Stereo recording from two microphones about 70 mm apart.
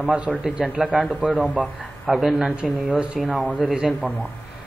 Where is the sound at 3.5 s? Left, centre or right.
Centre.